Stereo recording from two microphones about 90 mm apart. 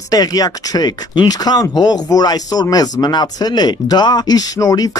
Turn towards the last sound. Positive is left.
turn(degrees=45)  # may be behind; listen again after turning